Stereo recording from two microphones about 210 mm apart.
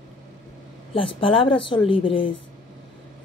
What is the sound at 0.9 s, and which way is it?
A woman's voice, 25° left (ahead or behind).